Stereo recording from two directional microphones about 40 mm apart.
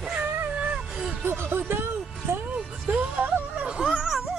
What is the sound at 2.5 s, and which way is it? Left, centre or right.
Music, right.